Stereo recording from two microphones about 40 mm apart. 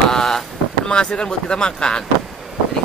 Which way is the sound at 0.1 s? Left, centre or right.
Centre.